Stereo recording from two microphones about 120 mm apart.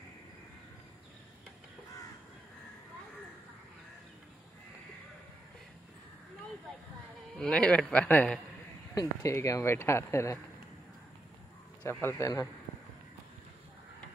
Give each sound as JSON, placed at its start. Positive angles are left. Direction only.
{"t": 7.3, "sound": "speech", "side_deg": 10}
{"t": 8.9, "sound": "speech", "side_deg": 25}
{"t": 11.8, "sound": "speech", "side_deg": 20}